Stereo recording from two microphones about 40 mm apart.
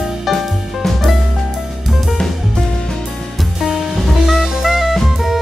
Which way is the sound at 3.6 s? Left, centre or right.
Centre.